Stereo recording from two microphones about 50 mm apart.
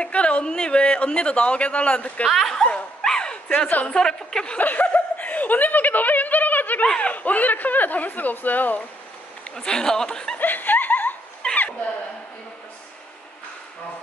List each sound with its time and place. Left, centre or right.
0.0 s speech: left
2.2 s speech: centre
2.5 s dog: centre
3.0 s bow-wow: centre
3.6 s a woman's voice: left
3.9 s speech: centre
4.6 s chuckle: left
7.0 s a sound: left
9.6 s speech: centre
10.4 s a sound: left
11.4 s a sound: left